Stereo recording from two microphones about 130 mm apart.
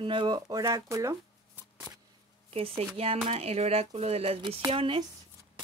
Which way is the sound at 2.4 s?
50° right (ahead or behind).